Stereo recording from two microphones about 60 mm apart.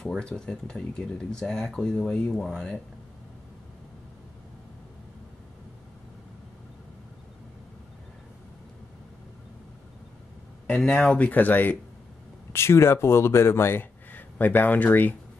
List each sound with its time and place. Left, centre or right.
0.2 s speech: centre
10.8 s speech: centre; by 11.8 s left
12.5 s speech: left